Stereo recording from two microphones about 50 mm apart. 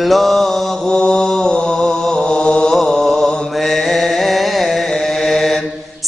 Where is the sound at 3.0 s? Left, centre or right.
Centre.